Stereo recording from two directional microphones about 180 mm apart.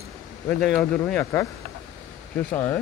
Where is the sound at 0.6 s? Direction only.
5° left (ahead or behind).